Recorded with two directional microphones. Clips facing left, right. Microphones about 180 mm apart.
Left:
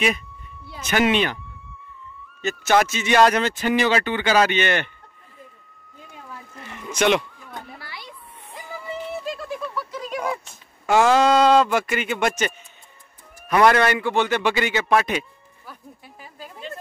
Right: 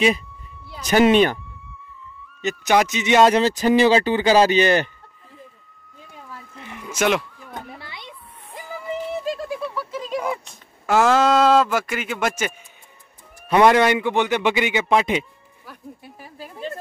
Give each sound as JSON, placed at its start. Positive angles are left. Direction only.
{"t": 0.8, "sound": "speech", "side_deg": -35}
{"t": 2.4, "sound": "speech", "side_deg": -15}
{"t": 6.6, "sound": "a sound", "side_deg": -10}
{"t": 7.5, "sound": "children playing", "side_deg": -20}
{"t": 9.5, "sound": "a sound", "side_deg": -10}
{"t": 9.9, "sound": "speech", "side_deg": -5}
{"t": 13.5, "sound": "a man's voice", "side_deg": -20}
{"t": 16.2, "sound": "speech", "side_deg": -5}